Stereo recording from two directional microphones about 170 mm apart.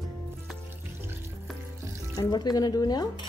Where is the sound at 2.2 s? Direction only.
25° left (ahead or behind).